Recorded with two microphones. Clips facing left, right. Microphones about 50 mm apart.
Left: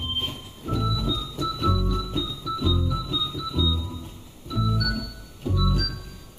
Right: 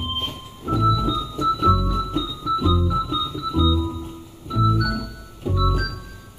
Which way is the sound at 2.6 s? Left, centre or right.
Right.